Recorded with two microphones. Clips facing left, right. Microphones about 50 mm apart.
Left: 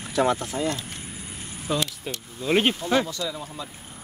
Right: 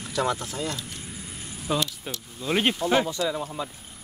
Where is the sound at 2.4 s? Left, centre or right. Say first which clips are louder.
Left 3 dB; centre.